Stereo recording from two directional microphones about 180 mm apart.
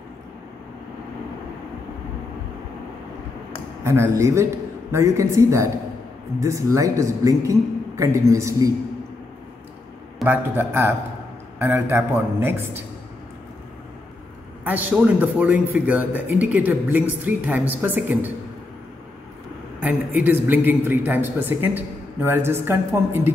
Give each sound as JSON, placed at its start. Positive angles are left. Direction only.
{"t": 3.8, "sound": "a man's voice", "side_deg": -15}
{"t": 10.2, "sound": "a man's voice", "side_deg": -10}
{"t": 14.6, "sound": "a man's voice", "side_deg": -10}
{"t": 19.8, "sound": "a man's voice", "side_deg": -10}